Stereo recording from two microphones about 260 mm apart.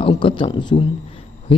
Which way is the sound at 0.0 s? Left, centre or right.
Centre.